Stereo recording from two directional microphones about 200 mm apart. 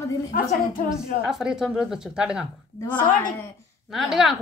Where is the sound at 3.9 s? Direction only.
Centre (ahead or behind).